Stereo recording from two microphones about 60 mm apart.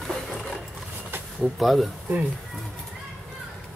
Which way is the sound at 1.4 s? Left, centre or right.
Centre.